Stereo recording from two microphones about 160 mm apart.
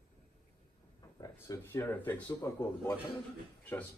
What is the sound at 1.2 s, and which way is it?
Speech, 20° left (ahead or behind).